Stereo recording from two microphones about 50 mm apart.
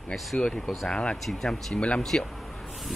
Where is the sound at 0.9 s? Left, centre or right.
Centre.